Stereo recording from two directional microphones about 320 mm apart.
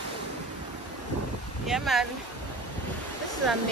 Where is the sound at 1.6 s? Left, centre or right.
Centre.